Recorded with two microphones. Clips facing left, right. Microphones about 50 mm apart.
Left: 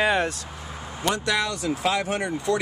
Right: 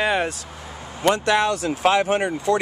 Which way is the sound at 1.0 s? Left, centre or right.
Right.